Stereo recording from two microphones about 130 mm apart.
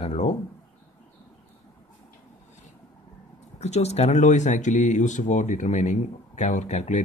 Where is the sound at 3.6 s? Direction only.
55° left (ahead or behind).